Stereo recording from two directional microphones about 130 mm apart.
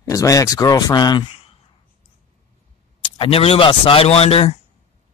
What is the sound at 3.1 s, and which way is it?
A man's voice, 45° left (ahead or behind).